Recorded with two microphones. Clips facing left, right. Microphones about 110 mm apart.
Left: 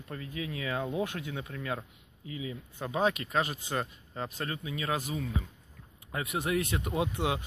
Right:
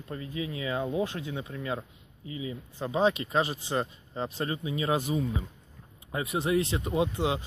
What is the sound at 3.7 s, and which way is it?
Speech, 15° right (ahead or behind).